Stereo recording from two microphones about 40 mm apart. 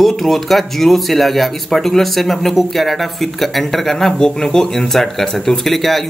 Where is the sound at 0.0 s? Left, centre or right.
Centre.